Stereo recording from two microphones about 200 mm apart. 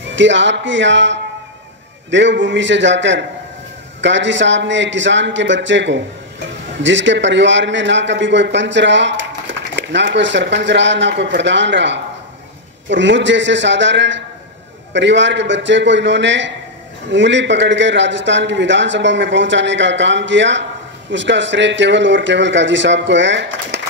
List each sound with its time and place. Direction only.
0.1 s a man's voice: 65° right (ahead or behind)